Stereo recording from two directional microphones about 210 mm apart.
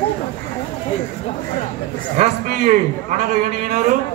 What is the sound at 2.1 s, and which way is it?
A man's voice, 35° right (ahead or behind).